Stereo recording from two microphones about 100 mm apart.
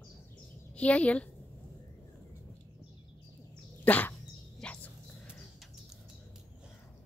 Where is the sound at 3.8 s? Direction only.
15° left (ahead or behind).